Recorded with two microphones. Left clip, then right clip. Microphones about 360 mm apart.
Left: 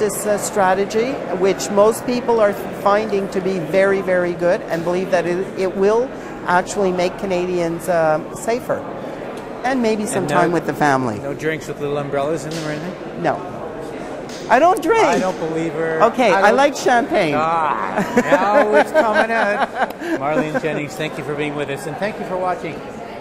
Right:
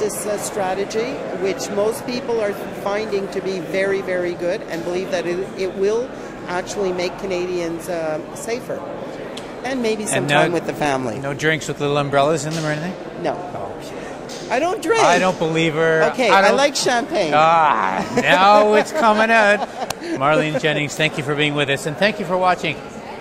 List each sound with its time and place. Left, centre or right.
0.0 s speech: left
9.7 s a woman's voice: left
10.1 s a woman's voice: right
10.4 s speech: centre
11.2 s speech: right
14.5 s speech: left
14.8 s speech: centre
15.2 s speech: right
16.4 s speech: centre
17.3 s speech: right
19.6 s speech: left
20.2 s speech: right